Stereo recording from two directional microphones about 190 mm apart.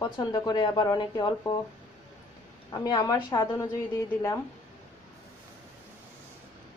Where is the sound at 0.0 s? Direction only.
20° left (ahead or behind).